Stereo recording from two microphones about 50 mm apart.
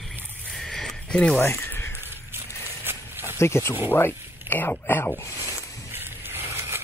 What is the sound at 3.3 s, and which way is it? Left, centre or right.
Speech, left.